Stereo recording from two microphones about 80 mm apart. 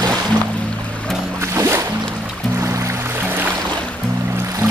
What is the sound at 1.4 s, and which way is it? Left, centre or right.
Music, right.